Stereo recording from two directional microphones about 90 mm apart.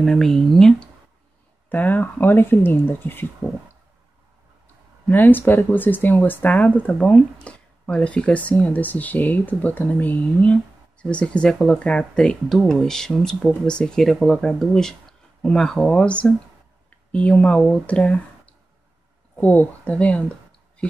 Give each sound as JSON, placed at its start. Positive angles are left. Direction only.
{"t": 0.0, "sound": "speech", "side_deg": 5}
{"t": 1.7, "sound": "speech", "side_deg": 20}
{"t": 5.0, "sound": "speech", "side_deg": 20}